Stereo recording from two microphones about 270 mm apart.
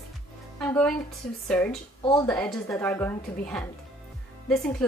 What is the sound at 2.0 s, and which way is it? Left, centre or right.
Speech, centre.